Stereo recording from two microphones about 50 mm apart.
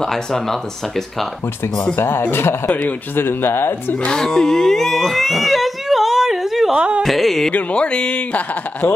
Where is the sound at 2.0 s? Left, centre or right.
Left.